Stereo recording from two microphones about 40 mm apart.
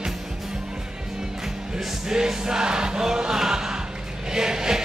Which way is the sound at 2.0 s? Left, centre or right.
Centre.